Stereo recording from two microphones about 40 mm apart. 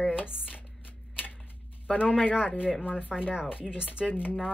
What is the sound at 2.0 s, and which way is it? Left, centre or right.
Speech, right.